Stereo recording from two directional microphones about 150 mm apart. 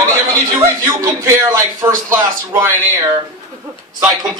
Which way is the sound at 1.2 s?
20° right (ahead or behind).